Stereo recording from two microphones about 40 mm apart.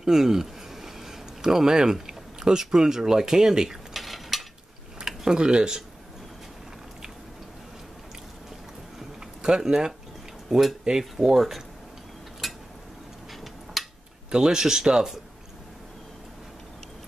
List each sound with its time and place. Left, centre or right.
0.0 s speech: centre
3.9 s stir: centre
5.0 s speech: centre
9.4 s speech: centre
12.4 s a sound: centre
14.3 s speech: centre